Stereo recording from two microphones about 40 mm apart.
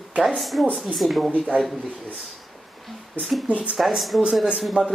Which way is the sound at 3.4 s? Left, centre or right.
Right.